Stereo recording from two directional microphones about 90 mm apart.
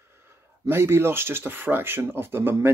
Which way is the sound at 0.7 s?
30° right (ahead or behind).